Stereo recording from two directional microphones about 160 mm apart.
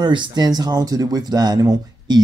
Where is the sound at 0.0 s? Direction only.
30° right (ahead or behind).